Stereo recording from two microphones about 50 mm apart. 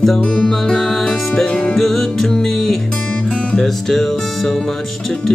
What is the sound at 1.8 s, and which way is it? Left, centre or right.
Music, centre.